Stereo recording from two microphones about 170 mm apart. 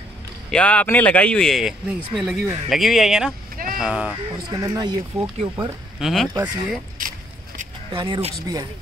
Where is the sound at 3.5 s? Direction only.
55° right (ahead or behind).